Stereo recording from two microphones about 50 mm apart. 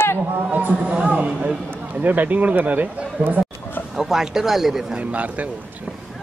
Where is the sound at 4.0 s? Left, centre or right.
Centre.